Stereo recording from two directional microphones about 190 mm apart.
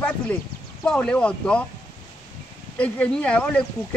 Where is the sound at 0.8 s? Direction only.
5° left (ahead or behind).